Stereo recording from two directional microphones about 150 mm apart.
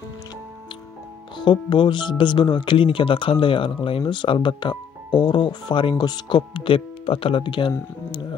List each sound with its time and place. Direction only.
1.3 s speech: 30° left (ahead or behind)